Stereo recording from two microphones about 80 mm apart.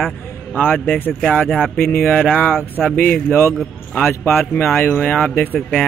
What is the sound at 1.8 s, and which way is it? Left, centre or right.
A man's voice, left.